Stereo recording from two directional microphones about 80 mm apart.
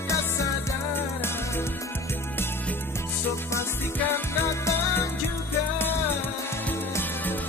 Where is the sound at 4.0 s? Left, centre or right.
Left.